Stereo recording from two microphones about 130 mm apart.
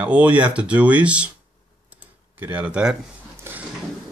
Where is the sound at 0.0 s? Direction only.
10° right (ahead or behind).